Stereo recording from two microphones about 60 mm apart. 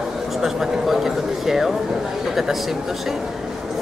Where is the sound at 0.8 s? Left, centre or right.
Centre.